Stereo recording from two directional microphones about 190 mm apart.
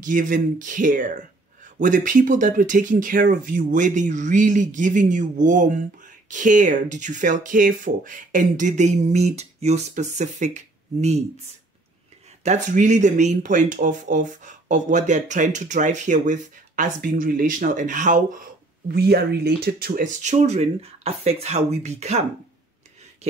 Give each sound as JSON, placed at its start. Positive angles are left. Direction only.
{"t": 0.0, "sound": "speech", "side_deg": -45}
{"t": 12.4, "sound": "speech", "side_deg": -40}
{"t": 18.9, "sound": "speech", "side_deg": -55}